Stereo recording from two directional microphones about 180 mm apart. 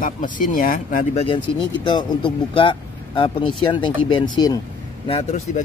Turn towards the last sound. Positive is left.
turn(degrees=40)  # may be behind; listen again after turning